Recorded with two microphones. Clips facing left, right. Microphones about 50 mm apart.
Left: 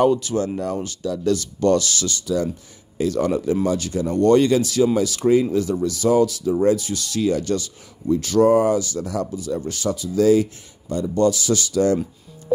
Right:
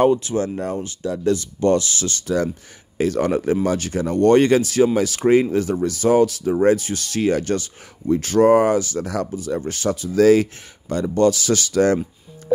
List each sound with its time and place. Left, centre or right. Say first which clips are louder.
0.1 s speech: right 1 dB; right
1.3 s ratchet: even; centre
2.0 s speech: right 1 dB; right
10.2 s speech: right 2 dB; right